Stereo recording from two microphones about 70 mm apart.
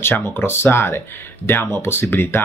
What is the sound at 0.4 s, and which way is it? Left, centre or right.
Speech, left.